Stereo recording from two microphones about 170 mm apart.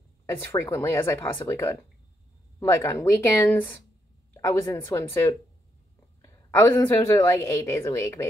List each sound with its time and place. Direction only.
0.3 s a woman's voice: 15° left (ahead or behind)